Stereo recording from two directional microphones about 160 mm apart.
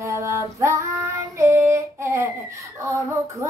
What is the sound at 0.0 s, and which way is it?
Female singing, 20° right (ahead or behind).